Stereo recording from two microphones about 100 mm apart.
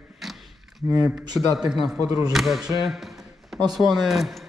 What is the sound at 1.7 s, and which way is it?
A man's voice, 5° right (ahead or behind).